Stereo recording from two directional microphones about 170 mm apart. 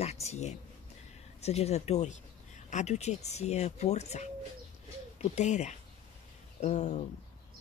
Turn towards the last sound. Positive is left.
turn(degrees=45)  # may be behind; listen again after turning